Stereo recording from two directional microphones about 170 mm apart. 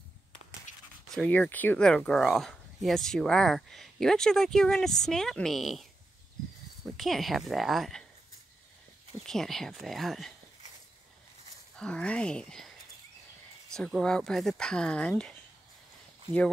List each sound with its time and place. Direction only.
0.7 s a sound: 45° left (ahead or behind)
1.1 s speech: 5° left (ahead or behind)
7.0 s speech: centre (ahead or behind)
9.2 s speech: centre (ahead or behind)
11.7 s speech: 5° left (ahead or behind)